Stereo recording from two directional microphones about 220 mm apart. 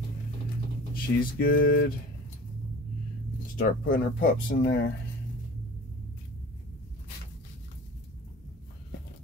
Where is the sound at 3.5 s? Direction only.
35° left (ahead or behind).